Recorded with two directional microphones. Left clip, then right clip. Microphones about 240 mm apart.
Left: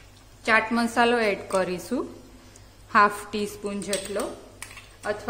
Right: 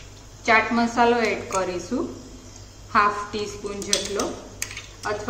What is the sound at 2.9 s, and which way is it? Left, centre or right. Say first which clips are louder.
A woman's voice: even; left.